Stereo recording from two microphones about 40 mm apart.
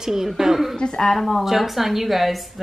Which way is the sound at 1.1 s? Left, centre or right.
Centre.